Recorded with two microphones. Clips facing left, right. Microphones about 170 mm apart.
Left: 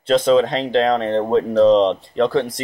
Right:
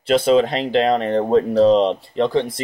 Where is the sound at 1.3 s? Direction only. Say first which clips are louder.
Even; 40° right (ahead or behind).